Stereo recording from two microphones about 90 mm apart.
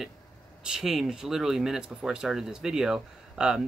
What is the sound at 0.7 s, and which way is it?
Speech, 5° right (ahead or behind).